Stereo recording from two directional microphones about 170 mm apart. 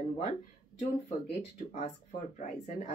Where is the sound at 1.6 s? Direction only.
40° left (ahead or behind).